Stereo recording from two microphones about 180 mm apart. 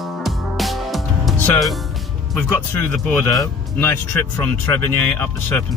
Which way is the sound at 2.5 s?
10° left (ahead or behind).